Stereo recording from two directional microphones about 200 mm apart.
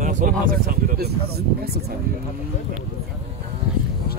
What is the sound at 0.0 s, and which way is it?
Speech, 40° right (ahead or behind).